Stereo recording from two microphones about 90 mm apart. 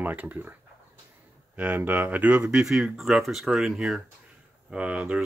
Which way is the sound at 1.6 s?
20° right (ahead or behind).